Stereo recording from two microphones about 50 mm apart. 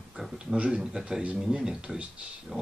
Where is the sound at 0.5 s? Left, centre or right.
Right.